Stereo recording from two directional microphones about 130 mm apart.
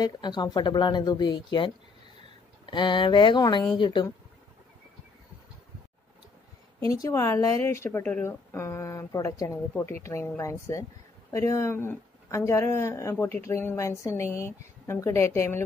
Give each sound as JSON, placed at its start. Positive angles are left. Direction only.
{"t": 0.0, "sound": "speech", "side_deg": 35}
{"t": 6.8, "sound": "a woman's voice", "side_deg": 25}